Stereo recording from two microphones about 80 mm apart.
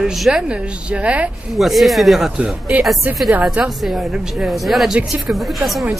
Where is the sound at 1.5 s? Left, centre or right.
Centre.